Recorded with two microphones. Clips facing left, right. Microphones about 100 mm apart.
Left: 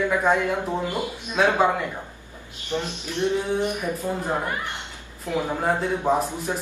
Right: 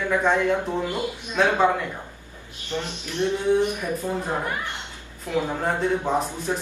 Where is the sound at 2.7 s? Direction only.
15° left (ahead or behind).